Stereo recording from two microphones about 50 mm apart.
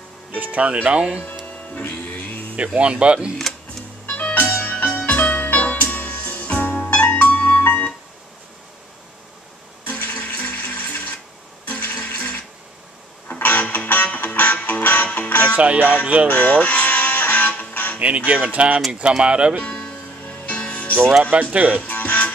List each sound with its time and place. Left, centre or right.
0.3 s speech: right
1.2 s music: left
2.5 s speech: right
3.5 s music: centre
4.2 s music: left
9.8 s music: left
15.5 s music: right
16.3 s music: left
17.9 s speech: right
19.6 s music: centre
21.2 s speech: right
21.8 s music: left